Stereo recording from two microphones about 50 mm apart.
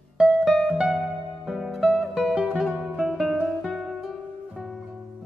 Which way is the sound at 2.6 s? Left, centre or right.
Centre.